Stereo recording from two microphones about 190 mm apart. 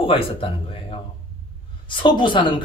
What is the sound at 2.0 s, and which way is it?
Speech, 25° left (ahead or behind).